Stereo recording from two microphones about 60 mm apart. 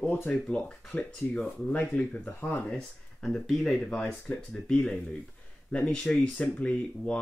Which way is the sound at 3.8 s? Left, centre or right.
Centre.